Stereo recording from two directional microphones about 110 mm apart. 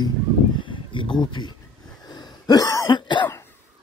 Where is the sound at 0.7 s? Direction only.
50° left (ahead or behind).